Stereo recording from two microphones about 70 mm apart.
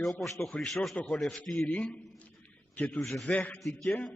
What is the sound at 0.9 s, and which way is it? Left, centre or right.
Speech, centre.